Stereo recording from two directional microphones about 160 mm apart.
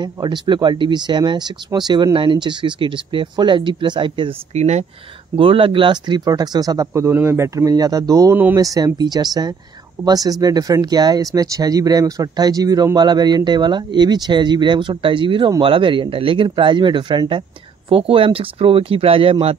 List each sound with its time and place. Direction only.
0.0 s speech: 25° right (ahead or behind)
4.6 s speech: 45° right (ahead or behind)
5.3 s speech: 35° right (ahead or behind)